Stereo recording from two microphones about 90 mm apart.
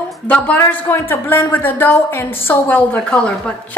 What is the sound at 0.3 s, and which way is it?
Speech, 20° left (ahead or behind).